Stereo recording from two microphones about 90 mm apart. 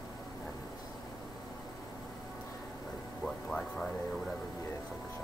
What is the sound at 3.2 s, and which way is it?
Music, 5° left (ahead or behind).